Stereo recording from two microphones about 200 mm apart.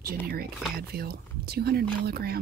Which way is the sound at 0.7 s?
50° right (ahead or behind).